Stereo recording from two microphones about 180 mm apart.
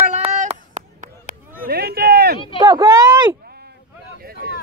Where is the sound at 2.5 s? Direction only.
20° right (ahead or behind).